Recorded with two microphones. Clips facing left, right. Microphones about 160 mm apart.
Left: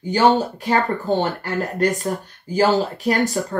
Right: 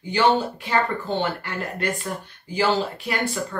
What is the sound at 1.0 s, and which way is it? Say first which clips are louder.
Speech: left 5 dB; 40° left (ahead or behind).